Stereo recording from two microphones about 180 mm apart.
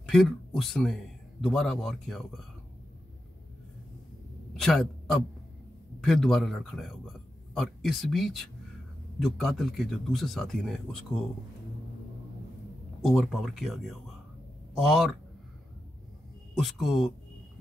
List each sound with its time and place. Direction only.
0.1 s a man's voice: centre (ahead or behind)
4.6 s speech: centre (ahead or behind)
13.0 s speech: centre (ahead or behind)
16.5 s speech: centre (ahead or behind)